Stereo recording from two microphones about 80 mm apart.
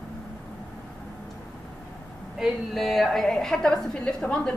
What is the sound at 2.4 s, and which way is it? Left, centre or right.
A woman's voice, centre.